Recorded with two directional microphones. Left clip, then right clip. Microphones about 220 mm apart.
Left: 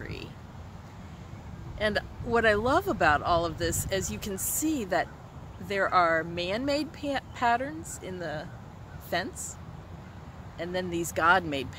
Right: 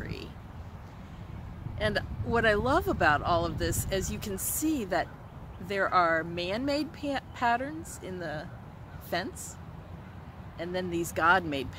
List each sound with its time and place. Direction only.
0.0 s a sound: 5° right (ahead or behind)
1.8 s speech: 5° right (ahead or behind)
10.6 s speech: 5° right (ahead or behind)